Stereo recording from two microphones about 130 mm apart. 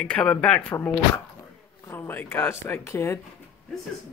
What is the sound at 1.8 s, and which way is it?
Speech, 15° left (ahead or behind).